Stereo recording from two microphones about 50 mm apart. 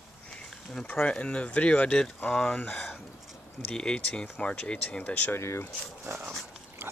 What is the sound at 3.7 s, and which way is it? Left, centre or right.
Speech, centre.